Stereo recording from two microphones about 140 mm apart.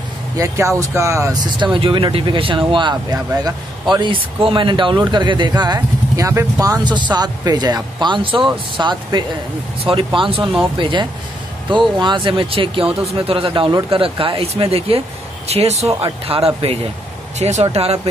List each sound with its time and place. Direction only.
0.4 s speech: 20° right (ahead or behind)
1.6 s a man's voice: 35° right (ahead or behind)